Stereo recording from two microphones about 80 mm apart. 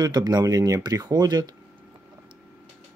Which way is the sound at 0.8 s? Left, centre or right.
Right.